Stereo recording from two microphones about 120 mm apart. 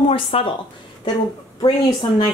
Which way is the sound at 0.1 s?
50° left (ahead or behind).